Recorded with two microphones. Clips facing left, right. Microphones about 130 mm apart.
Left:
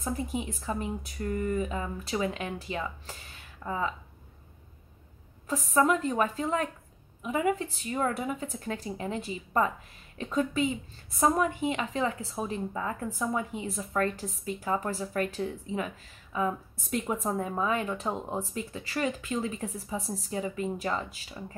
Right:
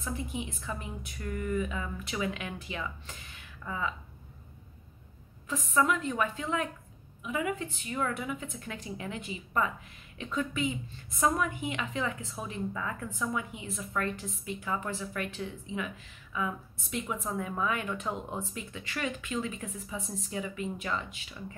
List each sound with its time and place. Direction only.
0.0 s a woman's voice: 40° left (ahead or behind)
5.5 s a woman's voice: 35° left (ahead or behind)